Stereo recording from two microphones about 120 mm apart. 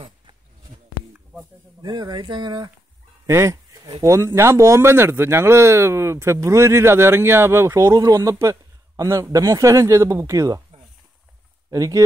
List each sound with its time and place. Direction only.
1.8 s speech: 35° right (ahead or behind)
3.3 s a sound: 25° right (ahead or behind)
4.0 s speech: 25° right (ahead or behind)
11.7 s speech: 25° right (ahead or behind)